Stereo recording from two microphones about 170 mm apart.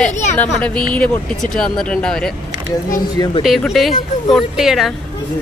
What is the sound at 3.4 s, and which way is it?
Speech, centre (ahead or behind).